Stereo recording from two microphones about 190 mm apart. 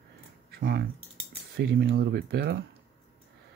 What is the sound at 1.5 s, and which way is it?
Speech, 60° right (ahead or behind).